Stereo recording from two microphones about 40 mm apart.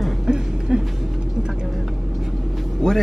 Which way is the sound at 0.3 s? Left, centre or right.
Centre.